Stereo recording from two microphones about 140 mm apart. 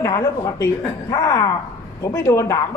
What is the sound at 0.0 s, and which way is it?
A man's voice, 25° left (ahead or behind).